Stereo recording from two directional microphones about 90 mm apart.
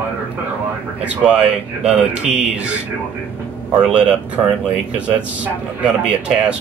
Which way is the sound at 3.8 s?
10° right (ahead or behind).